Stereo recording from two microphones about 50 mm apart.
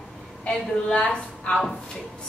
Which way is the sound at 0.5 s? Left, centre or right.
Centre.